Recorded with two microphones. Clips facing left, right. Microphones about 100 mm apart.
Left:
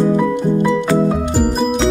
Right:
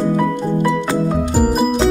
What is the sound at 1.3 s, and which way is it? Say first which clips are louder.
Music: right 3 dB; 5° right (ahead or behind).